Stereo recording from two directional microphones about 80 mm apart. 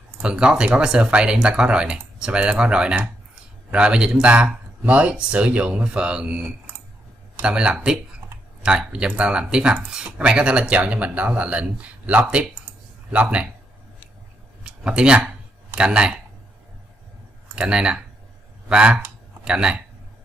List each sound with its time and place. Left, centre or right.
0.2 s speech: centre
7.4 s speech: centre
14.6 s a sound: centre
17.6 s speech: centre